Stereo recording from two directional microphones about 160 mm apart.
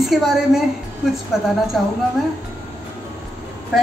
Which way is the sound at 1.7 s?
Centre (ahead or behind).